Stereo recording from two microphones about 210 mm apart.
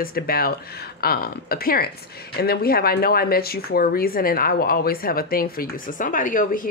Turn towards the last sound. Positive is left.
turn(degrees=40)  # may be behind; listen again after turning